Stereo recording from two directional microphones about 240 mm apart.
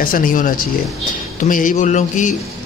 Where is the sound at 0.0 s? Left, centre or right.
Left.